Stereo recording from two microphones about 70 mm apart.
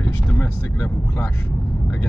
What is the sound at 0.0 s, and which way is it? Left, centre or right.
Vehicle, left.